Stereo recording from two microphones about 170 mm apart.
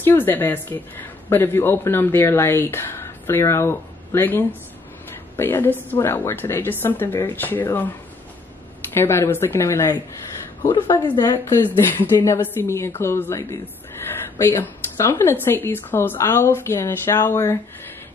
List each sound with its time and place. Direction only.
0.0 s speech: 10° left (ahead or behind)
8.9 s speech: 15° left (ahead or behind)
11.1 s a woman's voice: 25° left (ahead or behind)
11.6 s speech: 10° left (ahead or behind)